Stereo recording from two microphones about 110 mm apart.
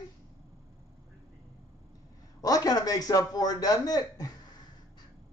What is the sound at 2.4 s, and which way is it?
A man's voice, 35° left (ahead or behind).